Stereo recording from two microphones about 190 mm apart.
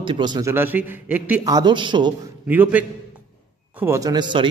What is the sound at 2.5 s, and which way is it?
A man's voice, 10° right (ahead or behind).